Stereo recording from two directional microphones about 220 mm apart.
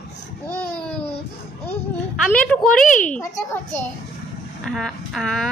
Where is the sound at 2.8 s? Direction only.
35° left (ahead or behind).